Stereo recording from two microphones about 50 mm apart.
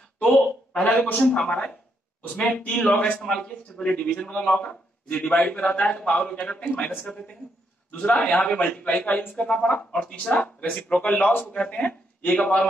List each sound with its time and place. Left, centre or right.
1.0 s a man's voice: left
9.4 s a man's voice: centre; by 11.4 s left
11.5 s a man's voice: left